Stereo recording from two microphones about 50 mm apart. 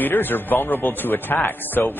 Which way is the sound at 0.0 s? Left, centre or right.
Left.